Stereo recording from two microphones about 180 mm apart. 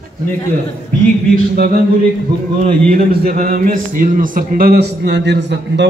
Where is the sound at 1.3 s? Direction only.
55° right (ahead or behind).